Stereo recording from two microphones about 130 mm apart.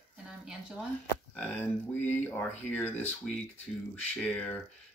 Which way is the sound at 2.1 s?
15° left (ahead or behind).